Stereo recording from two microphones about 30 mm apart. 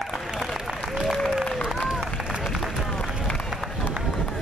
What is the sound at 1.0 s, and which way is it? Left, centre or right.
Applause, centre.